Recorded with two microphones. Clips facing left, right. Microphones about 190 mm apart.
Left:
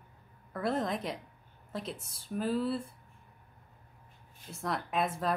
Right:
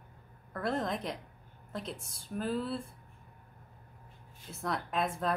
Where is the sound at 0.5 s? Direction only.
Centre (ahead or behind).